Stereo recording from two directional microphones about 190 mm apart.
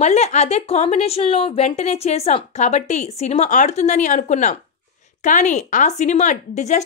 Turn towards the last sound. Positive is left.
turn(degrees=35)  # may be behind; listen again after turning